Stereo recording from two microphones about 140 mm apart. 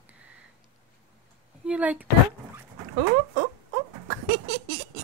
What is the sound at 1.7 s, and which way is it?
Speech, 10° right (ahead or behind).